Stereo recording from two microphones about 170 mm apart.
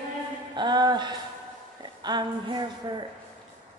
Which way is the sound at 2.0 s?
25° right (ahead or behind).